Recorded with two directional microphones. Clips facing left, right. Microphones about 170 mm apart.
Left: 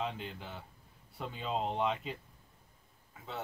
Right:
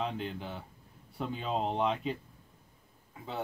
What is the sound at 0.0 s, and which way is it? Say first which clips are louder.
Speech: right 4 dB; centre (ahead or behind).